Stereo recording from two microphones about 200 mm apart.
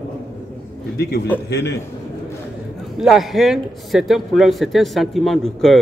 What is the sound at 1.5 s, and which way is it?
Speech, 55° left (ahead or behind).